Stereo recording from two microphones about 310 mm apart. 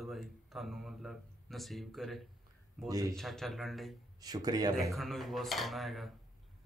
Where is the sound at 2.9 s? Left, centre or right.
Centre.